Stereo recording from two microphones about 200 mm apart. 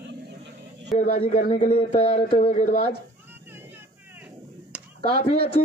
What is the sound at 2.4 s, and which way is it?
Speech, 35° left (ahead or behind).